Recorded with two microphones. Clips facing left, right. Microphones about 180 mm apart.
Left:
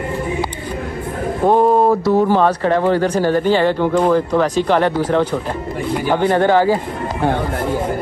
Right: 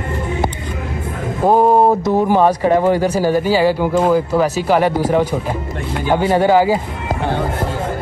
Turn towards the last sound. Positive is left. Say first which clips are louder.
# right 1 dB
turn(degrees=-10)  # may be behind; listen again after turning